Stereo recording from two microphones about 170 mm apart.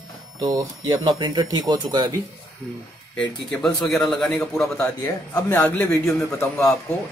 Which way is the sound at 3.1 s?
25° left (ahead or behind).